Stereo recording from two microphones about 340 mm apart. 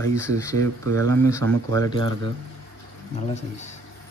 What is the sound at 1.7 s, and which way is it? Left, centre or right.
Speech, centre.